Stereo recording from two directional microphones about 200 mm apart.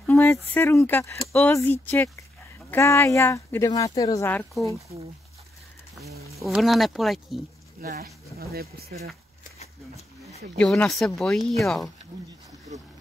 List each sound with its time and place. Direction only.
0.0 s speech: 10° left (ahead or behind)
6.4 s speech: centre (ahead or behind)
7.8 s speech: 50° right (ahead or behind)
9.6 s a sound: 30° left (ahead or behind)
10.6 s speech: 5° left (ahead or behind)